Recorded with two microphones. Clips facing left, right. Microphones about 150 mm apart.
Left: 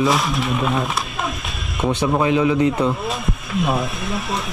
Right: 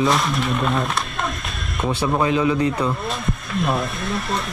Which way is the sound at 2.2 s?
15° left (ahead or behind).